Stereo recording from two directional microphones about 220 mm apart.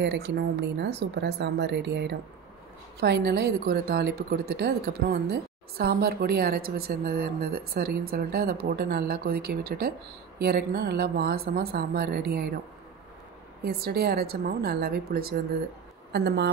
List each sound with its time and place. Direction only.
0.0 s a woman's voice: 50° right (ahead or behind)
13.7 s a woman's voice: 45° right (ahead or behind)